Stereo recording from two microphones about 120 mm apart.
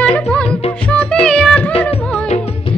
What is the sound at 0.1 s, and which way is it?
Music, 10° left (ahead or behind).